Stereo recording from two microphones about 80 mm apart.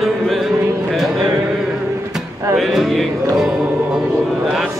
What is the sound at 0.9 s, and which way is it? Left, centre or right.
Music, centre.